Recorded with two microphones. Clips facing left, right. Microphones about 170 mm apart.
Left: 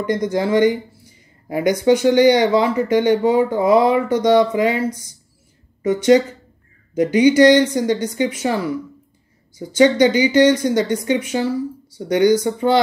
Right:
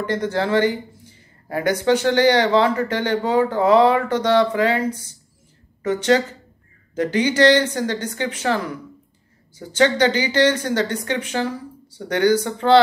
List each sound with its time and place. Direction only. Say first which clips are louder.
0.0 s speech: left 3 dB; 10° left (ahead or behind)